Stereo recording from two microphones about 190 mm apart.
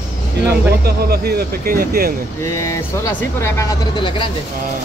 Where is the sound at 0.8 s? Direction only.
55° right (ahead or behind).